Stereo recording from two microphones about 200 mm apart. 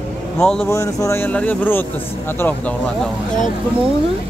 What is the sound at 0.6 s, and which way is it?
Speech, 15° left (ahead or behind).